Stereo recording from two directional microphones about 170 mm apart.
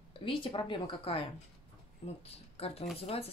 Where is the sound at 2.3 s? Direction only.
35° left (ahead or behind).